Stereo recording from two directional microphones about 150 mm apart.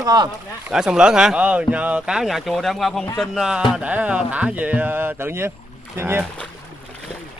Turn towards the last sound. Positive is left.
turn(degrees=-15)  # may be behind; listen again after turning